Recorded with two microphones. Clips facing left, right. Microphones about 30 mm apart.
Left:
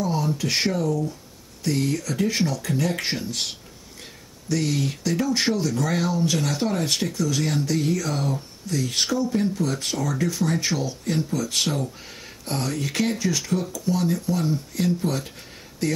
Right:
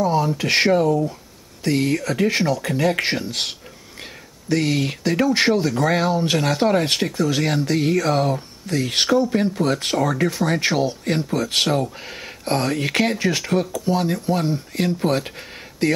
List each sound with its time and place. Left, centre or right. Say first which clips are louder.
0.0 s speech: right 5 dB; right
0.5 s speech: right 9 dB; right
1.6 s speech: right 4 dB; right